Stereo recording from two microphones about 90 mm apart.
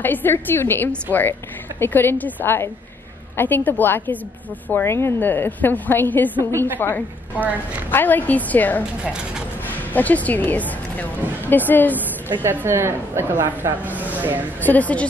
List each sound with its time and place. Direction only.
0.0 s a woman's voice: 20° left (ahead or behind)
9.0 s speech: 10° right (ahead or behind)
9.7 s speech: 20° left (ahead or behind)
12.3 s a woman's voice: 25° right (ahead or behind)
14.6 s a woman's voice: 20° left (ahead or behind)